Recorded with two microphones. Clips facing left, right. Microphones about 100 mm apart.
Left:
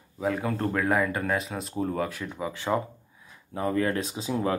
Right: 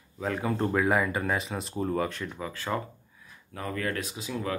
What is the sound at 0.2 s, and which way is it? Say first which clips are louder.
Speech: left 1 dB; centre (ahead or behind).